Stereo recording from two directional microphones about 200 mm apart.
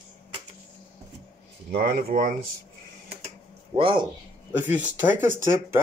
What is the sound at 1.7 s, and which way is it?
Speech, 50° right (ahead or behind).